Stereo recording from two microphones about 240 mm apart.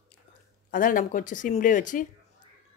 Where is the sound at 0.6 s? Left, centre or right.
Left.